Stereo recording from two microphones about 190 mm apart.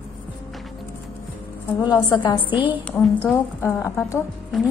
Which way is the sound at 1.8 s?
20° left (ahead or behind).